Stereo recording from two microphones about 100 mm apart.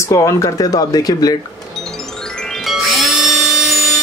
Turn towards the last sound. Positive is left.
turn(degrees=0)  # may be behind; listen again after turning